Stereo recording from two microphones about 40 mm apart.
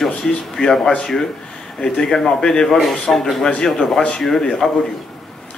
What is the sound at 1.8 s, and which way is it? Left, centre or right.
A man's voice, centre.